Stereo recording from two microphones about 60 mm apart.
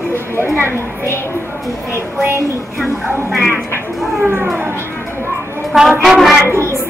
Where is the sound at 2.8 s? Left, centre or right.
Centre.